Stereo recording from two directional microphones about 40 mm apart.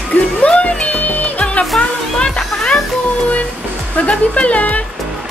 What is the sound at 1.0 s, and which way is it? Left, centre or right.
Music, left.